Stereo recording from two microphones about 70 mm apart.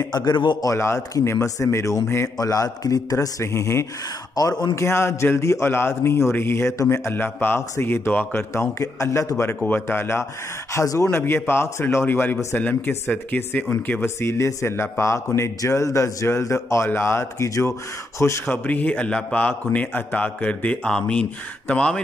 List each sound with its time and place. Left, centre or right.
0.0 s a man's voice: left
0.7 s a man's voice: left
2.3 s a man's voice: left
4.4 s a man's voice: left
4.7 s a man's voice: left
9.4 s a man's voice: left
10.7 s a man's voice: left
11.1 s a man's voice: left
14.0 s a man's voice: left
18.5 s a man's voice: left